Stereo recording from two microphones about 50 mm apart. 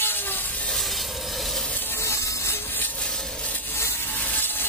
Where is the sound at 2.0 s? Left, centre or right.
Left.